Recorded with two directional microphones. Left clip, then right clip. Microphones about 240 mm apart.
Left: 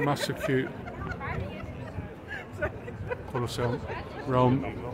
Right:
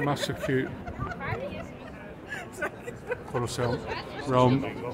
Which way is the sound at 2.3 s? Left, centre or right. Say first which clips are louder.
Even; right.